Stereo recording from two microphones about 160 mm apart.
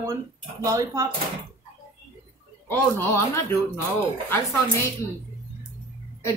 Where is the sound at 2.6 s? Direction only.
15° left (ahead or behind).